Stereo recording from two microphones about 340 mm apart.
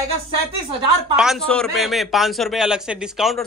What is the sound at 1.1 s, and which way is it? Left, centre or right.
A man's voice, centre.